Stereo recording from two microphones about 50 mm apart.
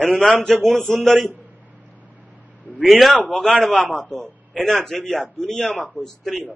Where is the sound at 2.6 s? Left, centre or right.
Left.